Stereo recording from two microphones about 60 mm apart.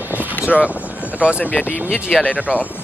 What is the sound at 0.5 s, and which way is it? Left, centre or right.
Speech, centre.